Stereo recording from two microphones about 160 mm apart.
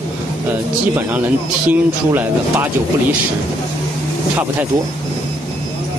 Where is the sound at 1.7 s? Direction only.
10° right (ahead or behind).